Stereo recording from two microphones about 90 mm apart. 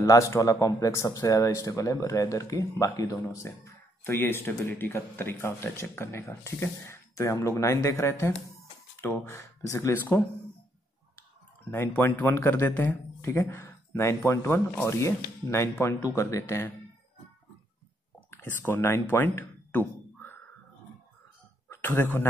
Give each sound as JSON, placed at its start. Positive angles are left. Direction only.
{"t": 0.0, "sound": "speech", "side_deg": 35}
{"t": 4.0, "sound": "speech", "side_deg": 25}
{"t": 9.9, "sound": "speech", "side_deg": 20}
{"t": 11.7, "sound": "speech", "side_deg": 20}
{"t": 18.3, "sound": "speech", "side_deg": 25}
{"t": 21.6, "sound": "speech", "side_deg": 25}